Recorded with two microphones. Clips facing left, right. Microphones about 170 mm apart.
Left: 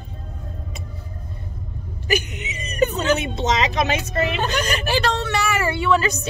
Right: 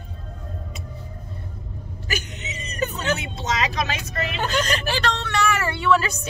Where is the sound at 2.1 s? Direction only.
10° left (ahead or behind).